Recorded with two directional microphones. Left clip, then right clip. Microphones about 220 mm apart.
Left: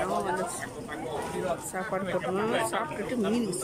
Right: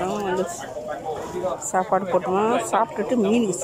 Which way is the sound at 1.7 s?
Centre (ahead or behind).